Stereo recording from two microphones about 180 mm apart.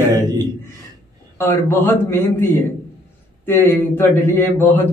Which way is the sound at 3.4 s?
10° left (ahead or behind).